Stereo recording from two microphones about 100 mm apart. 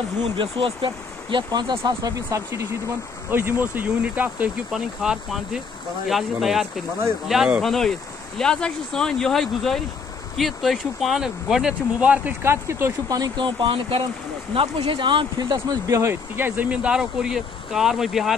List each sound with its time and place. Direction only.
0.2 s speech: 65° right (ahead or behind); by 1.8 s 45° right (ahead or behind)
1.9 s speech: 35° right (ahead or behind)
3.3 s speech: 20° right (ahead or behind); by 7.6 s 5° right (ahead or behind)
7.6 s speech: 5° left (ahead or behind); by 12.9 s 25° right (ahead or behind)
13.1 s speech: 45° right (ahead or behind)
15.9 s speech: 25° right (ahead or behind); by 18.3 s 5° right (ahead or behind)